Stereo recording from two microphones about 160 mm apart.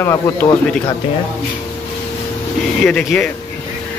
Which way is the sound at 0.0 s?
10° left (ahead or behind).